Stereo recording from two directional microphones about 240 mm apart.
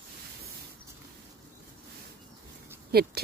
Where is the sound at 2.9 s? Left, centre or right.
Right.